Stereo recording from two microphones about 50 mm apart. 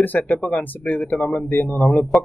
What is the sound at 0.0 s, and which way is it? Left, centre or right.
Speech, left.